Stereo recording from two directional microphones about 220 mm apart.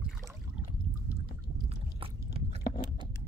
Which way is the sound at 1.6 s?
25° right (ahead or behind).